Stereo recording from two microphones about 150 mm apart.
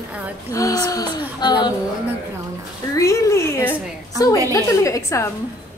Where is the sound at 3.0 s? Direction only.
20° left (ahead or behind).